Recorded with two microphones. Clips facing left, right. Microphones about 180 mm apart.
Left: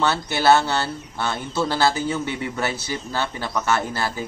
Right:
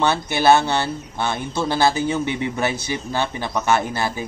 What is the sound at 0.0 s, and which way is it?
A man's voice, 15° right (ahead or behind).